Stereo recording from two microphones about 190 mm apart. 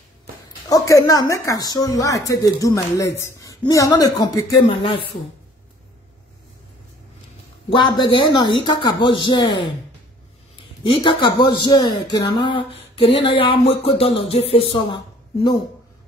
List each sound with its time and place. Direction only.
0.7 s speech: 20° left (ahead or behind)
7.7 s speech: 25° left (ahead or behind)
10.8 s speech: 25° left (ahead or behind)